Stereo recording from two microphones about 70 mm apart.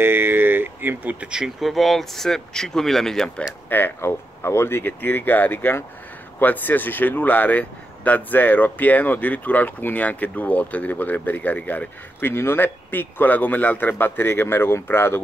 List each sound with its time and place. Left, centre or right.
0.0 s a sound: right
1.2 s speech: centre
1.6 s speech: centre
3.6 s speech: left
4.1 s speech: left